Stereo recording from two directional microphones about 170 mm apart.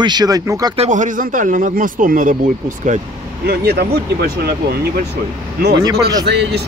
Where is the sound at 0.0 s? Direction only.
25° right (ahead or behind).